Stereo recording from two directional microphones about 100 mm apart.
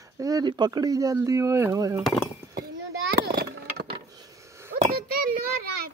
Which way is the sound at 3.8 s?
55° right (ahead or behind).